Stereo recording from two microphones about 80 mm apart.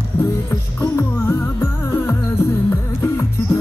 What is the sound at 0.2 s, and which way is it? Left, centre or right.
Music, left.